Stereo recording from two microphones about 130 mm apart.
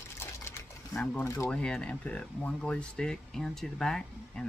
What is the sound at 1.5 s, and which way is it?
Speech, 5° left (ahead or behind).